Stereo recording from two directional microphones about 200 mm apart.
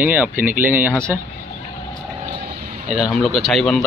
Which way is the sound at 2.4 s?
45° right (ahead or behind).